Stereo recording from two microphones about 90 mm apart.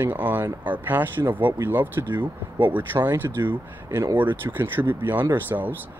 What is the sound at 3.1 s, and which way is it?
Speech, 25° right (ahead or behind).